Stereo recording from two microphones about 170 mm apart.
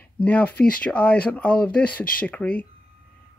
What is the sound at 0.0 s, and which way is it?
Speech, 10° left (ahead or behind).